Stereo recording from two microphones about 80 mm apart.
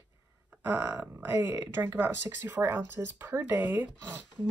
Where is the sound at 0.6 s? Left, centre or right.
Right.